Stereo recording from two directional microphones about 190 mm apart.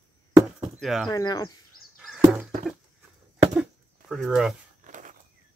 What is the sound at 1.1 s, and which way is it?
Speech, 20° left (ahead or behind).